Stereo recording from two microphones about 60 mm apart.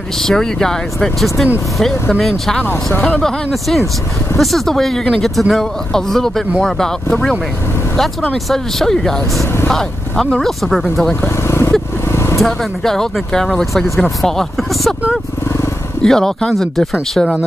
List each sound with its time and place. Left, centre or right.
0.2 s speech: centre
2.6 s speech: left
3.2 s speech: centre
8.5 s speech: centre
11.1 s speech: left
12.1 s vehicle: left
12.4 s speech: centre
16.0 s speech: centre